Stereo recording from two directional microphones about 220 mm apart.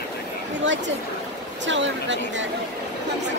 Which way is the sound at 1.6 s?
55° right (ahead or behind).